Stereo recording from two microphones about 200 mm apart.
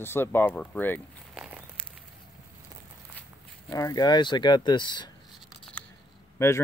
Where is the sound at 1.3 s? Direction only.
5° right (ahead or behind).